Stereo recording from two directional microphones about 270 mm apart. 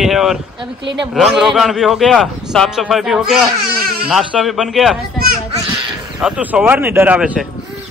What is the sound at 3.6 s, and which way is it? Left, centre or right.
Baby cry, right.